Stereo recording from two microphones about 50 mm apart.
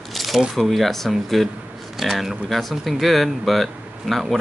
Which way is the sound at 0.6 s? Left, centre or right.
Centre.